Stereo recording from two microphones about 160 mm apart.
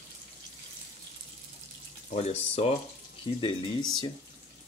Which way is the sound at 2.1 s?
40° left (ahead or behind).